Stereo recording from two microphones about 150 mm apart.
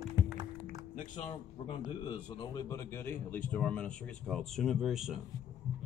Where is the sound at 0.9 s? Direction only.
55° left (ahead or behind).